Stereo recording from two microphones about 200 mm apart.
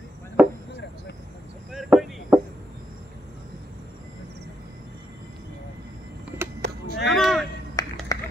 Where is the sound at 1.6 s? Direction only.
Centre (ahead or behind).